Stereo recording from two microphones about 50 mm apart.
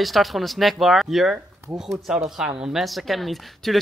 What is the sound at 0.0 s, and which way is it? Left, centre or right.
Speech, centre.